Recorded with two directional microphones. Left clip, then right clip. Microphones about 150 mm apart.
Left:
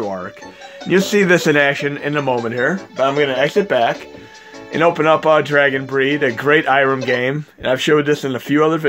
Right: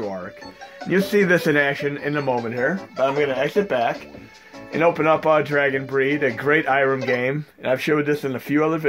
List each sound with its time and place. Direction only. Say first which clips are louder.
0.0 s music: left 5 dB; 40° left (ahead or behind)
0.8 s speech: left 4 dB; 35° left (ahead or behind); by 3.9 s 50° left (ahead or behind)
4.7 s speech: left 4 dB; 35° left (ahead or behind)